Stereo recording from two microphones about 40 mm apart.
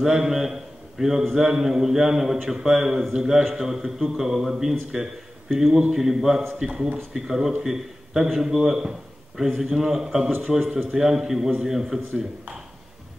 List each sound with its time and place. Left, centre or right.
0.0 s a man's voice: centre